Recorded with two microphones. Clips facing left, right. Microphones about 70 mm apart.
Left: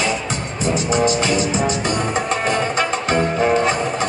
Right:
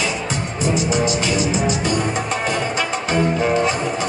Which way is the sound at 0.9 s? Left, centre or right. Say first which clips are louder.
Left 2 dB; left.